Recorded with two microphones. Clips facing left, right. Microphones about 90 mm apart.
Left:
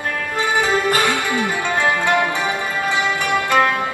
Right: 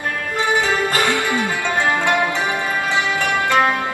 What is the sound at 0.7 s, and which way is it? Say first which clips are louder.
Music: left 1 dB; 15° left (ahead or behind).